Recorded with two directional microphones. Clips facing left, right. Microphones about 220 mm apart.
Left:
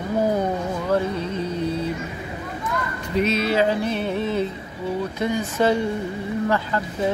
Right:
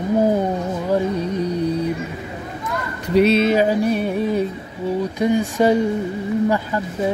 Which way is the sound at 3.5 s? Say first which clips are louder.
Right 4 dB; 15° right (ahead or behind).